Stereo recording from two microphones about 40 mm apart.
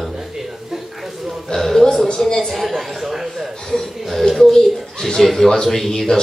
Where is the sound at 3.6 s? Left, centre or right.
Centre.